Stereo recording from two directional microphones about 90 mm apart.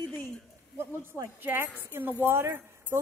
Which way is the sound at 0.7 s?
30° right (ahead or behind).